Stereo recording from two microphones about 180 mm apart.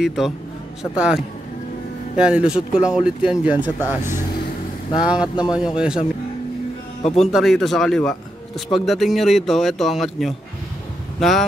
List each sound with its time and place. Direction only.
0.0 s speech: 5° right (ahead or behind)
5.0 s speech: 5° right (ahead or behind)
7.0 s speech: 35° left (ahead or behind)
7.2 s speech: centre (ahead or behind)